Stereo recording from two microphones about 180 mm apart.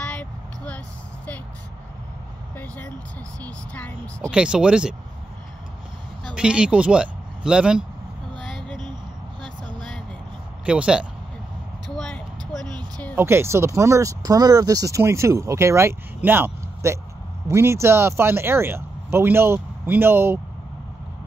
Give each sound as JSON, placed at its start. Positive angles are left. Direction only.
{"t": 0.1, "sound": "a sound", "side_deg": 5}
{"t": 2.5, "sound": "vehicle", "side_deg": 10}
{"t": 3.4, "sound": "speech", "side_deg": 10}
{"t": 4.3, "sound": "speech", "side_deg": -5}
{"t": 6.3, "sound": "a man's voice", "side_deg": -5}
{"t": 8.5, "sound": "a sound", "side_deg": 0}
{"t": 10.6, "sound": "speech", "side_deg": -5}
{"t": 11.9, "sound": "vehicle", "side_deg": 5}
{"t": 13.1, "sound": "speech", "side_deg": -15}